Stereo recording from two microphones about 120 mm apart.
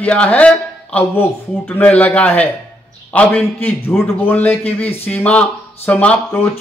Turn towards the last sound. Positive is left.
turn(degrees=15)  # may be behind; listen again after turning